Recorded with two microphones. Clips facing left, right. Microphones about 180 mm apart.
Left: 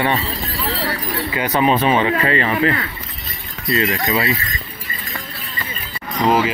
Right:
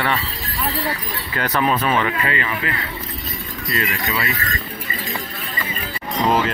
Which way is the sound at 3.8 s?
30° left (ahead or behind).